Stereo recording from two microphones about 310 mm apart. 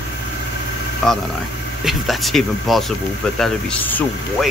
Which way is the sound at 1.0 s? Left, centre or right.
Centre.